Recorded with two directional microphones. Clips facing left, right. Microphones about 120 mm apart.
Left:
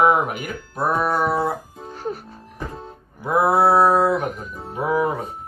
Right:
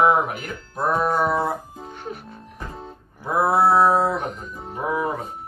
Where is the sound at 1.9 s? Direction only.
35° left (ahead or behind).